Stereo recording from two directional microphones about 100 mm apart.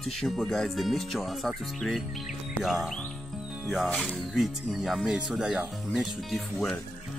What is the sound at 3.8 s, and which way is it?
Speech, 5° left (ahead or behind).